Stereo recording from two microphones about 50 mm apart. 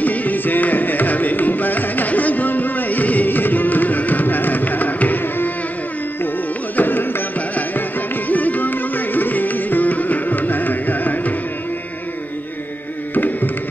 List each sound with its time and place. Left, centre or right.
0.0 s music: left
6.8 s carnatic music: left
8.3 s music: left
13.1 s music: left